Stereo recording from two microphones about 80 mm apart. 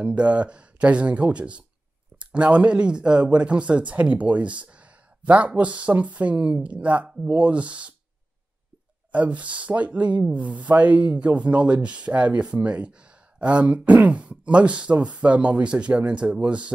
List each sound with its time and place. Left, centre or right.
0.0 s speech: centre
9.1 s speech: centre